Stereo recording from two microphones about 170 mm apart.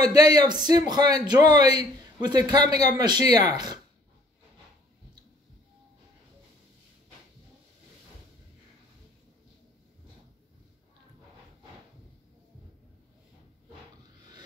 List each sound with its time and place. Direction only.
0.1 s a man's voice: 25° right (ahead or behind)